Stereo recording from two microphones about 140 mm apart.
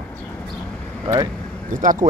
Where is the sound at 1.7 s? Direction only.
70° right (ahead or behind).